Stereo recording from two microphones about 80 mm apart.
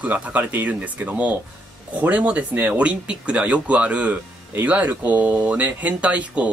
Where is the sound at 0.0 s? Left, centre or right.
Centre.